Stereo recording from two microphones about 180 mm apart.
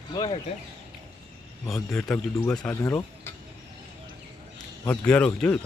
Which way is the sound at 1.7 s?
5° left (ahead or behind).